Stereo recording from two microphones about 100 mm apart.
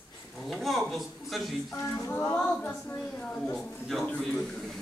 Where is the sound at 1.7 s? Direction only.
30° left (ahead or behind).